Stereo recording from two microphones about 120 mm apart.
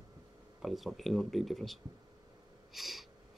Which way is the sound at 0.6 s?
Centre (ahead or behind).